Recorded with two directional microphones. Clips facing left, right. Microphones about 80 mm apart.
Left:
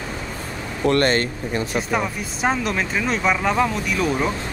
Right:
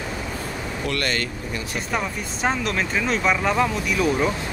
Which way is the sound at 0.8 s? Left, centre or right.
Left.